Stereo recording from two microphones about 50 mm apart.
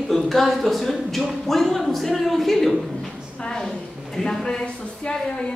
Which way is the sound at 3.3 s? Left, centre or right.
Centre.